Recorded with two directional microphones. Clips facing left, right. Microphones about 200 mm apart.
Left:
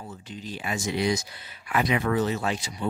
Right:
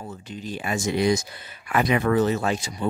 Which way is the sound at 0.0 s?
50° right (ahead or behind).